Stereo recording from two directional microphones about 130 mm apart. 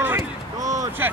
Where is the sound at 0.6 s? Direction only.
70° right (ahead or behind).